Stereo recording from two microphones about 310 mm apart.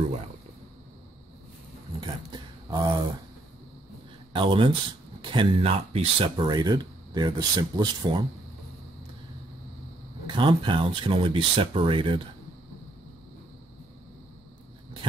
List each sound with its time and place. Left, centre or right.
2.0 s speech: centre
4.3 s speech: centre
10.2 s speech: centre